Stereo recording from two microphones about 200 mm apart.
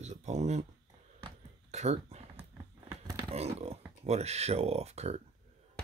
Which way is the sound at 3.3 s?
30° right (ahead or behind).